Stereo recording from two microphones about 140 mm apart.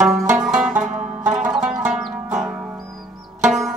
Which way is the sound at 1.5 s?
5° right (ahead or behind).